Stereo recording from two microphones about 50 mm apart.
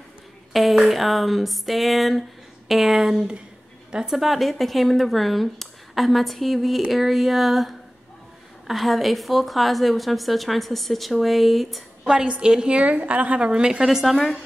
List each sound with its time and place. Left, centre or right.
0.5 s speech: centre
12.0 s a woman's voice: centre
13.8 s speech: centre